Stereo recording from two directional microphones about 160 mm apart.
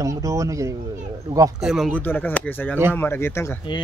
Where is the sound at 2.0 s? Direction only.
10° left (ahead or behind).